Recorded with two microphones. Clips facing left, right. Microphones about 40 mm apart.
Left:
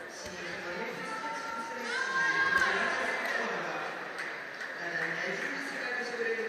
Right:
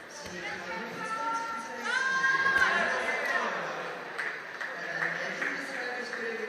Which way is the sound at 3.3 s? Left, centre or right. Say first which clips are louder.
Right 2 dB; centre.